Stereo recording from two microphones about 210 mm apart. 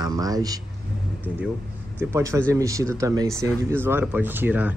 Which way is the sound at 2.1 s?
10° right (ahead or behind).